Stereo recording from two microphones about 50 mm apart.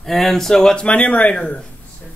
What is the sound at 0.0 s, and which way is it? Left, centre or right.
Speech, centre.